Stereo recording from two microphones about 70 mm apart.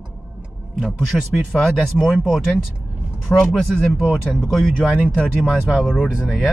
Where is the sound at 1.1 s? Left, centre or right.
Centre.